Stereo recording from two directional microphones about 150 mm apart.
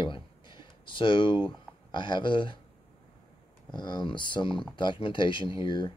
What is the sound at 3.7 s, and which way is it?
Speech, 30° left (ahead or behind).